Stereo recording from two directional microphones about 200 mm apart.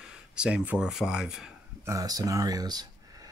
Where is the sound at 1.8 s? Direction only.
15° right (ahead or behind).